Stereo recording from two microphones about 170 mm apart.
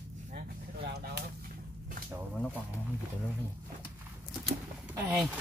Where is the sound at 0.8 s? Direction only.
70° right (ahead or behind).